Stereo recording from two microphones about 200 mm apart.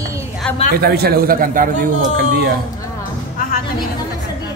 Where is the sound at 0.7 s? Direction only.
50° right (ahead or behind).